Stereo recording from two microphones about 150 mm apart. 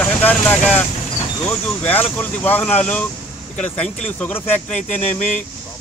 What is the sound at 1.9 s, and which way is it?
Speech, 10° left (ahead or behind).